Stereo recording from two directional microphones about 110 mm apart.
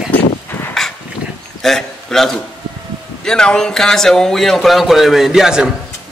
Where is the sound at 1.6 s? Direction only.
5° left (ahead or behind).